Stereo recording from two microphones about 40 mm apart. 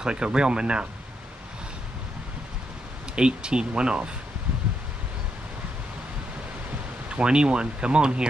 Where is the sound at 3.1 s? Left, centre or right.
Right.